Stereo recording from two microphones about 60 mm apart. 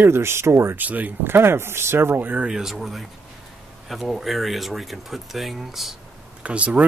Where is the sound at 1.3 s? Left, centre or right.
Right.